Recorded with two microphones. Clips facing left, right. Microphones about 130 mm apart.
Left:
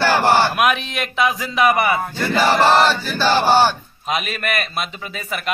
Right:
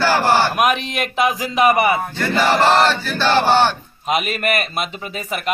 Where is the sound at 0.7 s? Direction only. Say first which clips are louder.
Right 1 dB; 50° right (ahead or behind).